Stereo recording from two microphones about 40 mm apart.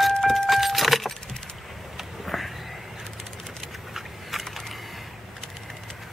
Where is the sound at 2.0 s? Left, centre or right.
Centre.